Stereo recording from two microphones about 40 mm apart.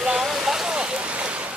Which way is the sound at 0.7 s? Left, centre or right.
Right.